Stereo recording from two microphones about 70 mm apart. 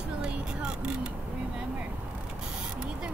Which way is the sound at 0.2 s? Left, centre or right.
Centre.